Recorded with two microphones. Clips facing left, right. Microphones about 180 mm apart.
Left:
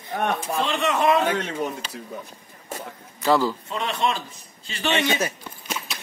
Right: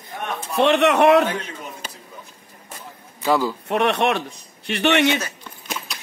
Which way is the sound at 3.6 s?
70° right (ahead or behind).